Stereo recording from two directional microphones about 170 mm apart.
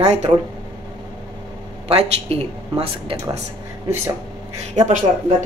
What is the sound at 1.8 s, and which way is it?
Speech, 35° right (ahead or behind).